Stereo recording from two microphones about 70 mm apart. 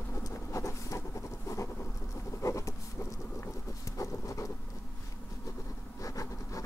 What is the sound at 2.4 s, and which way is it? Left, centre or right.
Insect, left.